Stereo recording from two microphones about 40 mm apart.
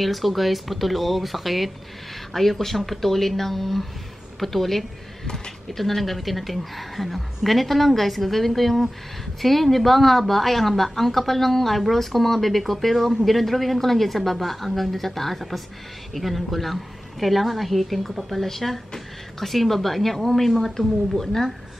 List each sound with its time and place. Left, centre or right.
0.0 s a woman's voice: centre
5.2 s speech: centre
5.7 s a woman's voice: centre